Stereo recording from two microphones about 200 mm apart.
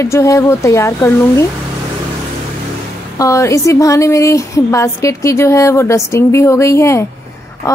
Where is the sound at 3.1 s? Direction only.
15° left (ahead or behind).